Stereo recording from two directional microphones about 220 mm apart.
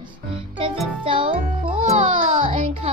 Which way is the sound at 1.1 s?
25° right (ahead or behind).